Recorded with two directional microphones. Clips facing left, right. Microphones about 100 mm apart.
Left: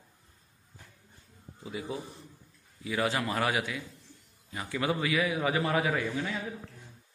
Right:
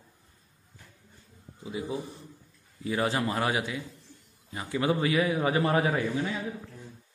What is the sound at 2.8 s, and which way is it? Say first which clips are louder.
A man's voice: right 2 dB; 30° right (ahead or behind).